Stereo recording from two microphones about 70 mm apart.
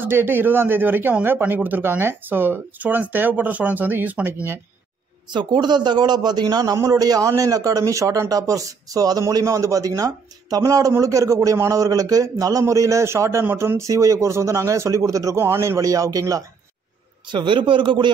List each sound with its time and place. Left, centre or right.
0.0 s speech: right
5.3 s a man's voice: right
9.3 s a man's voice: right
15.3 s a man's voice: right
15.8 s a man's voice: right
17.4 s a man's voice: right